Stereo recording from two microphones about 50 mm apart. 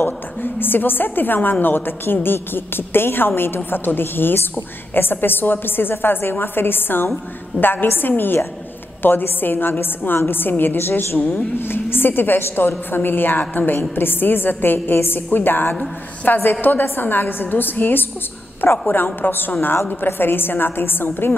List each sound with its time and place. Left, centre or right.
0.0 s a woman's voice: left